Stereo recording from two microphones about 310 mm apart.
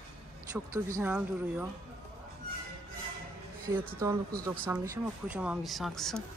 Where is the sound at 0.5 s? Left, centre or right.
Centre.